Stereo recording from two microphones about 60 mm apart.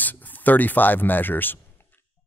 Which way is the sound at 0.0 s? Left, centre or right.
Left.